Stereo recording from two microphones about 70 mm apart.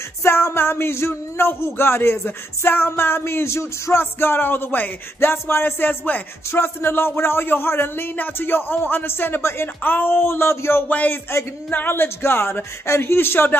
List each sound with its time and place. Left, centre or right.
0.2 s speech: left
10.9 s speech: left